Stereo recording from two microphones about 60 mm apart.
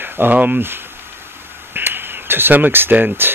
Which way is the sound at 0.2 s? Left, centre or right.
Right.